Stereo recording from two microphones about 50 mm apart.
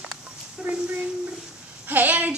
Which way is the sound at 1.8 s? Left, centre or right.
Right.